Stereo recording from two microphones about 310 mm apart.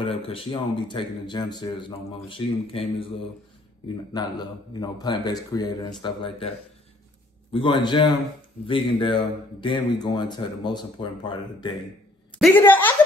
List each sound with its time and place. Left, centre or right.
0.0 s speech: centre
7.5 s speech: centre
12.4 s a sound: centre